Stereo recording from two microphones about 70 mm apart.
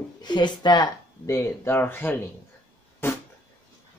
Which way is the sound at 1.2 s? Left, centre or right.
Left.